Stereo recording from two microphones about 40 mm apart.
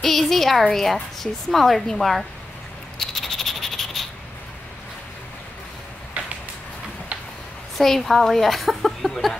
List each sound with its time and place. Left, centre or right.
0.0 s speech: centre
3.0 s frog: centre
6.2 s vehicle: right
7.7 s speech: centre